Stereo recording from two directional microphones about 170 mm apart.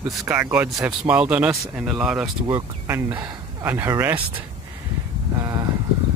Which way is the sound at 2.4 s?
15° right (ahead or behind).